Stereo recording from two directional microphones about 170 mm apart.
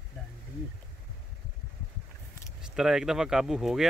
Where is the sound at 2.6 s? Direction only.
5° right (ahead or behind).